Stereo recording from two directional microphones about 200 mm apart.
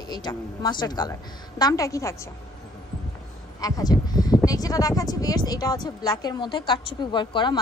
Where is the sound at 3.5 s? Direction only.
20° left (ahead or behind).